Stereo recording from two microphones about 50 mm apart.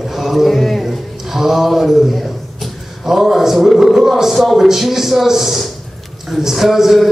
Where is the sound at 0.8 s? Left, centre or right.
Centre.